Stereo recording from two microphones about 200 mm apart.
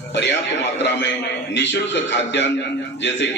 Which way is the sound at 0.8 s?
60° left (ahead or behind).